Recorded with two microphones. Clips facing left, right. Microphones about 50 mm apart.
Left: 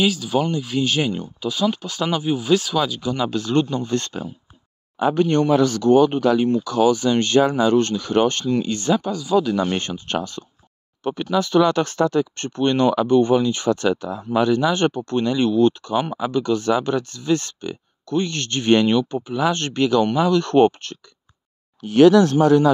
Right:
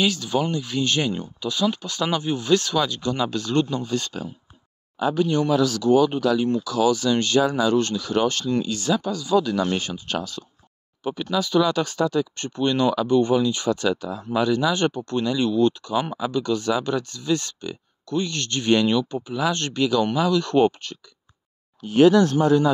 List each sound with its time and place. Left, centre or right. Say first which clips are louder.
0.0 s speech: left 3 dB; centre
3.8 s speech: left 3 dB; left
4.9 s speech: left 3 dB; left
9.1 s speech: left 2 dB; centre
9.7 s speech: left 2 dB; left
21.8 s speech: left 3 dB; left